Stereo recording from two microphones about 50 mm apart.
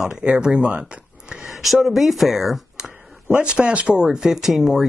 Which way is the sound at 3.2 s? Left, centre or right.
Right.